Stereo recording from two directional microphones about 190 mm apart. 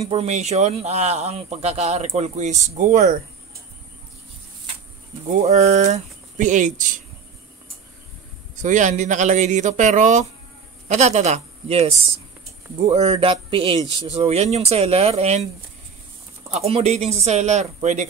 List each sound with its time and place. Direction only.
0.0 s speech: 30° right (ahead or behind)
5.3 s speech: 35° right (ahead or behind)
8.5 s a woman's voice: 40° right (ahead or behind)
16.4 s speech: 35° right (ahead or behind)